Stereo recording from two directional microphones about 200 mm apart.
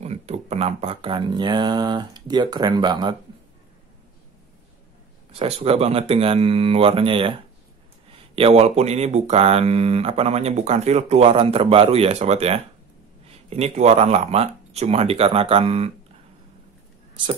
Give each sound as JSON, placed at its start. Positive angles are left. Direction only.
{"t": 0.0, "sound": "speech", "side_deg": -30}
{"t": 5.3, "sound": "speech", "side_deg": -30}
{"t": 8.4, "sound": "speech", "side_deg": -30}